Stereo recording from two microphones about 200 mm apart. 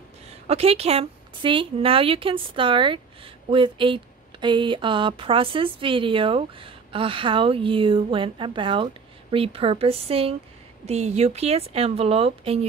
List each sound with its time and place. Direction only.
0.5 s speech: 30° right (ahead or behind)